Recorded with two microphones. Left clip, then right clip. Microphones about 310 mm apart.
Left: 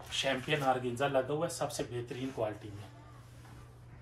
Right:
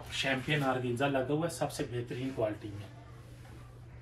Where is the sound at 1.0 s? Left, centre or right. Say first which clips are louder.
Even; left.